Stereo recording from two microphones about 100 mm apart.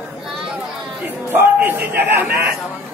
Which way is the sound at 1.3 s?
20° right (ahead or behind).